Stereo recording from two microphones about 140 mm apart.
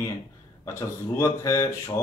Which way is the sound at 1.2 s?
20° left (ahead or behind).